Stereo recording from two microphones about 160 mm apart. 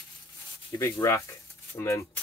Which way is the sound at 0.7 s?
20° left (ahead or behind).